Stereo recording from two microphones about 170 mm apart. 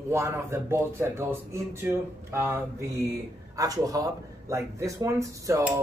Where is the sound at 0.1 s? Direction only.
15° right (ahead or behind).